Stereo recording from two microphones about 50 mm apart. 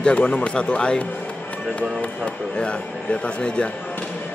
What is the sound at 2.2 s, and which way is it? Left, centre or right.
A man's voice, left.